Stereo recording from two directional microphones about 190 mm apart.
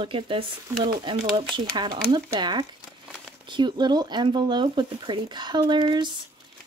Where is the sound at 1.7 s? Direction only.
20° right (ahead or behind).